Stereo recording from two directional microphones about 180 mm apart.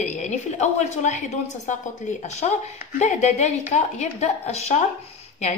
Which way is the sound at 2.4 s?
40° left (ahead or behind).